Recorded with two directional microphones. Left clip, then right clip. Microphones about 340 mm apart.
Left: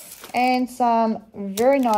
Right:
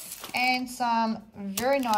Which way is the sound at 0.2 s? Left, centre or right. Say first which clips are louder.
Left 6 dB; right.